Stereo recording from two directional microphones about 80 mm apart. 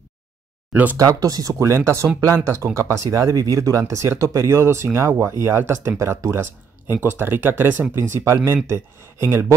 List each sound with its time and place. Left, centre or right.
0.9 s speech: right
6.9 s speech: right